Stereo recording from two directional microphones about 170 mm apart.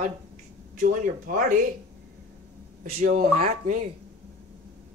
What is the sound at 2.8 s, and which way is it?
Speech, 55° right (ahead or behind).